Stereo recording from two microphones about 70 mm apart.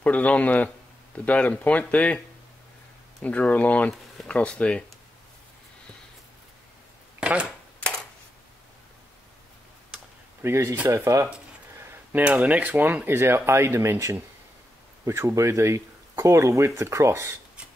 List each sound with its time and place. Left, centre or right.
0.0 s speech: centre
3.3 s speech: left
7.2 s a sound: centre
10.4 s speech: right
11.8 s a sound: right
12.3 s speech: right